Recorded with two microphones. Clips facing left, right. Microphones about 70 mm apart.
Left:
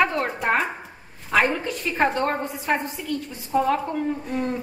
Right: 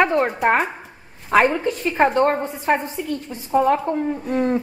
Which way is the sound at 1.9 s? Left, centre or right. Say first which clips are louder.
Right 5 dB; right.